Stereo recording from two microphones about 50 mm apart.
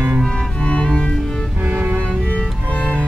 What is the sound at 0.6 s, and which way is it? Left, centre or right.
Music, left.